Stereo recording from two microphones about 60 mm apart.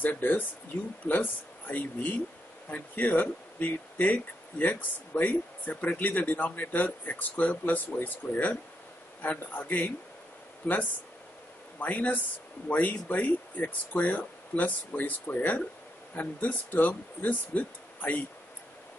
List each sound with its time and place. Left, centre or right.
0.0 s speech: left